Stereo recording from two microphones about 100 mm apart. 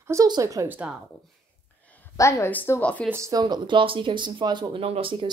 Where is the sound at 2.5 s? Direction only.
20° left (ahead or behind).